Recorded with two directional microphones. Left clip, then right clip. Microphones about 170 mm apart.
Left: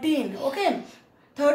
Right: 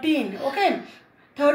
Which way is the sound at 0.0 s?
20° left (ahead or behind).